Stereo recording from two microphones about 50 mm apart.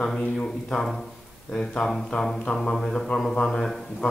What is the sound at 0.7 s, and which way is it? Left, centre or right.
Speech, centre.